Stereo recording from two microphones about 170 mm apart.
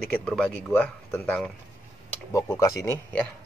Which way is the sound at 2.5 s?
20° left (ahead or behind).